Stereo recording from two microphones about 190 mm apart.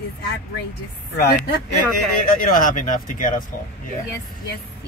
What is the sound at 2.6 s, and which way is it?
Speech, 45° left (ahead or behind).